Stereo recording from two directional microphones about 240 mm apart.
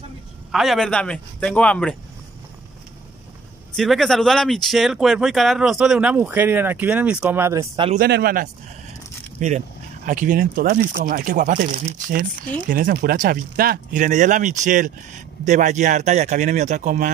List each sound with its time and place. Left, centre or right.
0.5 s speech: centre
3.7 s speech: centre; by 8.0 s right
8.0 s speech: right